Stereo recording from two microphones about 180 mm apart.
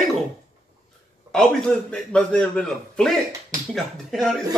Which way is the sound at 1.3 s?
5° left (ahead or behind).